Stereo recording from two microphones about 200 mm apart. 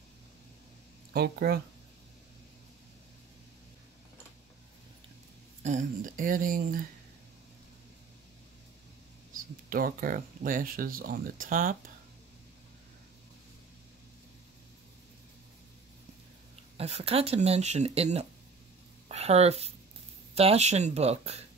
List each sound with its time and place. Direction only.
1.1 s speech: 55° right (ahead or behind)
5.6 s speech: 35° right (ahead or behind)
9.7 s speech: 45° right (ahead or behind)
16.7 s speech: 30° right (ahead or behind)